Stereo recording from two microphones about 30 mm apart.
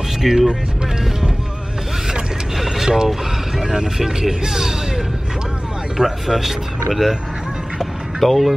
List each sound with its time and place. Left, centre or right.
0.2 s speech: centre
2.5 s vehicle: centre
3.5 s speech: centre
8.2 s speech: centre